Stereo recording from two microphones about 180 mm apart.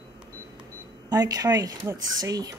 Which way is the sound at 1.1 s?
20° right (ahead or behind).